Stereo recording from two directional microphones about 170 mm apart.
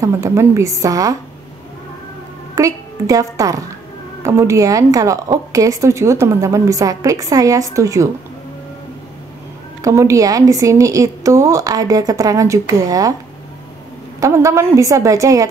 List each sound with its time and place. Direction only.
0.0 s a woman's voice: 15° right (ahead or behind)
2.5 s a woman's voice: 20° right (ahead or behind)
9.8 s a woman's voice: 20° right (ahead or behind)
14.2 s a woman's voice: 15° right (ahead or behind)